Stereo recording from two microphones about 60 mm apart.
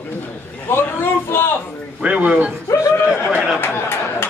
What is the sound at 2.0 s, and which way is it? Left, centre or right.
Speech, right.